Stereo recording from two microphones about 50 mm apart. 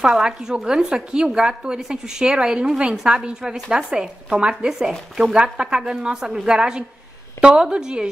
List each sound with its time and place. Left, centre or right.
0.0 s a woman's voice: centre